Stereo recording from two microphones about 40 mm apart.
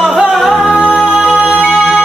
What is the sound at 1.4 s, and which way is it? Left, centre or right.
Music, right.